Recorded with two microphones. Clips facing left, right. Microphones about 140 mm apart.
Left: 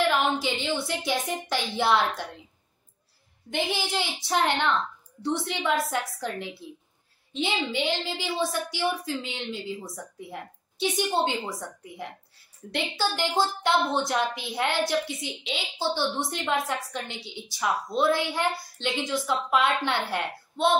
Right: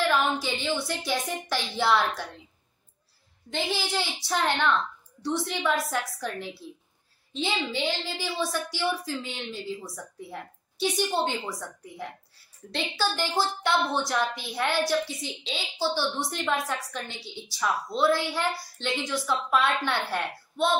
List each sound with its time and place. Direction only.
0.1 s a woman's voice: 20° left (ahead or behind)
3.5 s a woman's voice: 20° left (ahead or behind)